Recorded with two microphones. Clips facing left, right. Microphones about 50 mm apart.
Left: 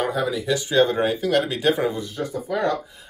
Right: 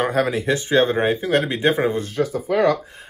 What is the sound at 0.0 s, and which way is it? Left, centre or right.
Speech, right.